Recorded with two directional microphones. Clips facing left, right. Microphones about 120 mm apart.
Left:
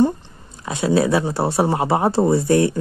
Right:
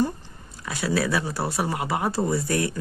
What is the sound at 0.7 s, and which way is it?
Speech, 25° left (ahead or behind).